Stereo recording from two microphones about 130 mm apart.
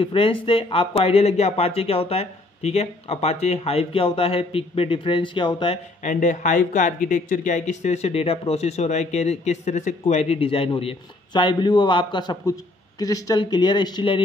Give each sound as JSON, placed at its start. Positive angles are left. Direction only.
{"t": 0.0, "sound": "speech", "side_deg": 45}
{"t": 6.0, "sound": "speech", "side_deg": 75}